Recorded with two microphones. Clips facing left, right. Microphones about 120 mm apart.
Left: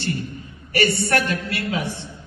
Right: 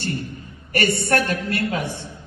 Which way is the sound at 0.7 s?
45° right (ahead or behind).